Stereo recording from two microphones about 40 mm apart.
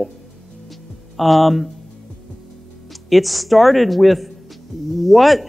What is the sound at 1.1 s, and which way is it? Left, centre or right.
Speech, centre.